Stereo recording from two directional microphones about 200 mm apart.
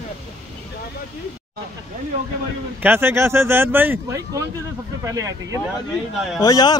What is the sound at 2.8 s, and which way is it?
Speech, 10° right (ahead or behind).